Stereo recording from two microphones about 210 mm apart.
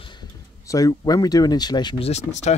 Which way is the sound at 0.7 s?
15° left (ahead or behind).